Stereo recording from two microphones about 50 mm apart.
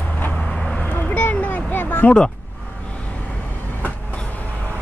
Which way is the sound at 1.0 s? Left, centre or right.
Left.